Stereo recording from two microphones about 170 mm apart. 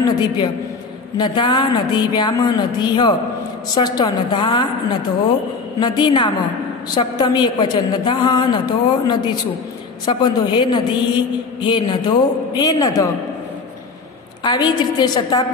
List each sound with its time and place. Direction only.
0.0 s a sound: 25° left (ahead or behind)
1.1 s a woman's voice: 25° left (ahead or behind)
5.8 s a woman's voice: 25° left (ahead or behind)
14.4 s a woman's voice: 25° left (ahead or behind)